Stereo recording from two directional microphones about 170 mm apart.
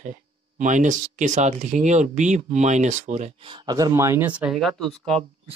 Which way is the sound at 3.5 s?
25° right (ahead or behind).